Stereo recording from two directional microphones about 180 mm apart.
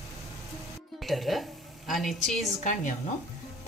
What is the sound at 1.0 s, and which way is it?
A woman's voice, centre (ahead or behind).